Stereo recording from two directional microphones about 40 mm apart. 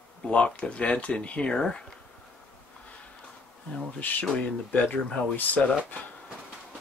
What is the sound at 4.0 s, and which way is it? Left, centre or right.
Speech, left.